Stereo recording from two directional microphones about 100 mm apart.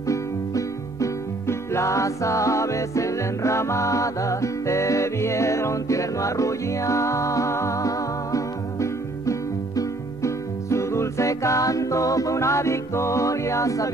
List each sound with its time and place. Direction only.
0.1 s music: 30° left (ahead or behind)